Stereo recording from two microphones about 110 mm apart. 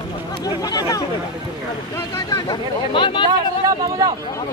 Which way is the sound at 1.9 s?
25° left (ahead or behind).